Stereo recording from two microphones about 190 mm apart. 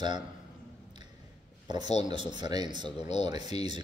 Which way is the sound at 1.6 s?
20° right (ahead or behind).